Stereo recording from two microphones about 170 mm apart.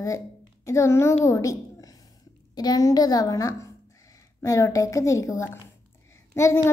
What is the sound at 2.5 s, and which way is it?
A woman's voice, 20° left (ahead or behind).